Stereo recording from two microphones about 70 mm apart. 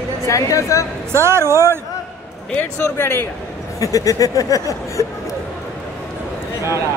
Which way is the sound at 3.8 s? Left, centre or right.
Left.